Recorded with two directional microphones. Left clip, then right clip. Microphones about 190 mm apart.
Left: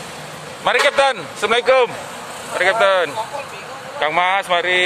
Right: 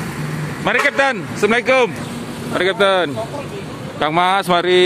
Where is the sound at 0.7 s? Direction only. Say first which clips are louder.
Left 1 dB; 10° left (ahead or behind).